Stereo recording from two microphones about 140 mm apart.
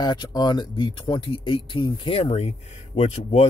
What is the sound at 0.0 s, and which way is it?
Speech, 30° left (ahead or behind).